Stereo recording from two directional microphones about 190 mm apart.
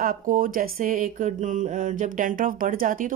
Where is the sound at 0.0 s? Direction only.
45° right (ahead or behind).